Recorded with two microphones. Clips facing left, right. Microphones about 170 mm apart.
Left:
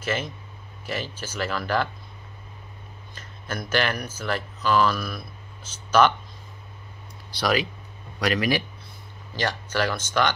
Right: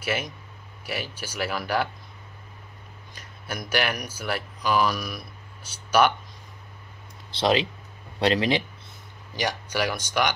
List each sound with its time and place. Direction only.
0.0 s speech: 10° right (ahead or behind)
3.2 s speech: 10° right (ahead or behind)
7.2 s speech: 25° right (ahead or behind)
9.3 s speech: 15° right (ahead or behind)